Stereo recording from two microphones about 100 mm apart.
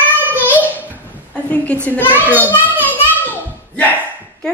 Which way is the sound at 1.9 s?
20° left (ahead or behind).